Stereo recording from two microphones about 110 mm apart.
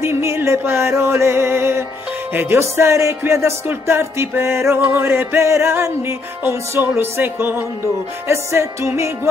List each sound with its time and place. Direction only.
0.0 s music: 25° right (ahead or behind)